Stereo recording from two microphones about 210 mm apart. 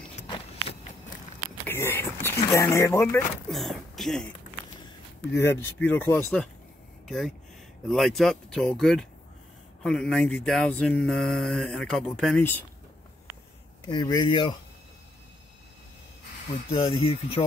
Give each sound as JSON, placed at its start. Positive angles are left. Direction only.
{"t": 1.7, "sound": "speech", "side_deg": 10}
{"t": 3.4, "sound": "speech", "side_deg": 0}
{"t": 5.3, "sound": "speech", "side_deg": 10}
{"t": 13.8, "sound": "speech", "side_deg": 20}
{"t": 16.7, "sound": "speech", "side_deg": 20}